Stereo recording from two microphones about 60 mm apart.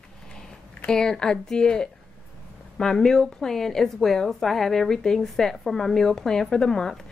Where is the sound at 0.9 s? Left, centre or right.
Centre.